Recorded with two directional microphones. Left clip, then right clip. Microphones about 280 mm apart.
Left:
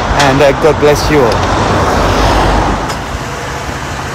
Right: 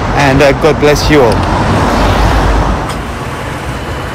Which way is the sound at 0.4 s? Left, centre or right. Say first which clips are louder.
Right 1 dB; centre.